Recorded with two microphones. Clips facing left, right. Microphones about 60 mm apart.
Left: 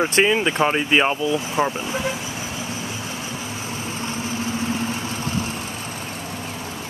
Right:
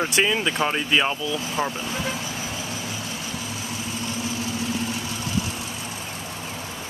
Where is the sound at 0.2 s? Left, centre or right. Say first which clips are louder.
Left 4 dB; centre.